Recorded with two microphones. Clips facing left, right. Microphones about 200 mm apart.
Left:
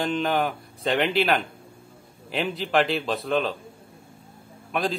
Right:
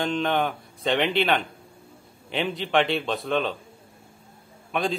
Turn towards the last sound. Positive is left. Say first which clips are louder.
# even
turn(degrees=0)  # may be behind; listen again after turning